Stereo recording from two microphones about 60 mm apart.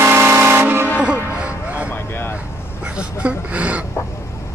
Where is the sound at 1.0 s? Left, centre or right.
Right.